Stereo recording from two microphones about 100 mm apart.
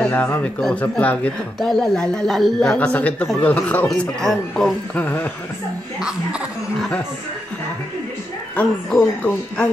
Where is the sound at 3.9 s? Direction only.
5° left (ahead or behind).